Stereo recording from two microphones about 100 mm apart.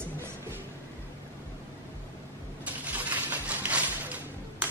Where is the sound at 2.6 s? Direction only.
15° right (ahead or behind).